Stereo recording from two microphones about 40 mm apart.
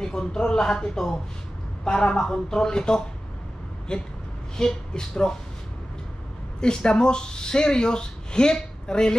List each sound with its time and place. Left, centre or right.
0.0 s speech: centre
6.6 s speech: left